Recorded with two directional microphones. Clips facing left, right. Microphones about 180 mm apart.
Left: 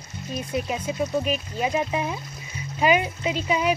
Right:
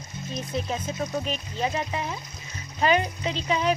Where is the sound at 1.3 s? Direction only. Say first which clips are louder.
Left 3 dB; 10° left (ahead or behind).